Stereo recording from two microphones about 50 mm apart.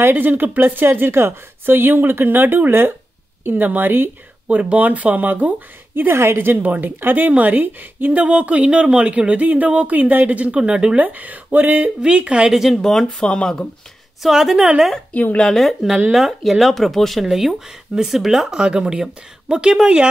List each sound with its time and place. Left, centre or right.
0.0 s a woman's voice: right
4.5 s a woman's voice: right
6.1 s a woman's voice: right; by 11.0 s centre
11.0 s a woman's voice: right
12.0 s speech: right
12.5 s speech: centre
12.8 s speech: centre
13.3 s speech: centre
14.2 s speech: centre
15.4 s speech: centre
18.5 s speech: centre